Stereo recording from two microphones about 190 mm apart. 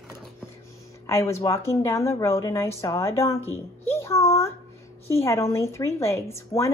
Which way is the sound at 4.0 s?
15° left (ahead or behind).